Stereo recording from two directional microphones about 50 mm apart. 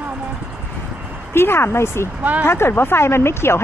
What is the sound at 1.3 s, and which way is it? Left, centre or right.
Speech, left.